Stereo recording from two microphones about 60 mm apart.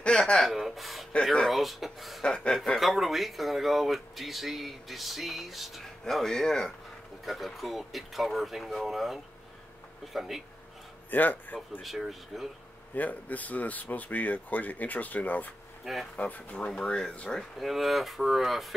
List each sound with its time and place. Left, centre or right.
0.0 s gasp: centre
0.5 s speech: centre
2.2 s speech: centre
2.6 s speech: centre
11.1 s speech: left
11.8 s speech: centre
12.9 s speech: left
15.8 s speech: centre
16.2 s speech: left
16.6 s speech: centre
17.6 s speech: centre